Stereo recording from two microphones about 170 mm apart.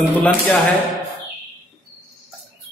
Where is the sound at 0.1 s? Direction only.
10° left (ahead or behind).